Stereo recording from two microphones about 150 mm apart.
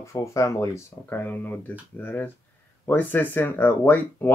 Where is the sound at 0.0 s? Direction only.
20° left (ahead or behind).